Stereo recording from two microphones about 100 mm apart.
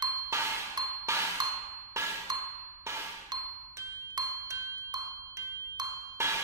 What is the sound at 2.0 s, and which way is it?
Ding, 30° right (ahead or behind).